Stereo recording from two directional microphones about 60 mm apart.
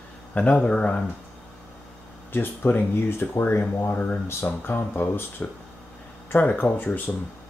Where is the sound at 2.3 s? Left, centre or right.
Left.